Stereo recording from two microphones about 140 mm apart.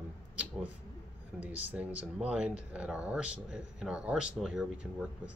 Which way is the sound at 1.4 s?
10° right (ahead or behind).